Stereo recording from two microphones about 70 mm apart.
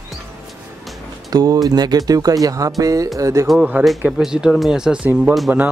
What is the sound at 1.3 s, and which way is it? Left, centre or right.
Speech, right.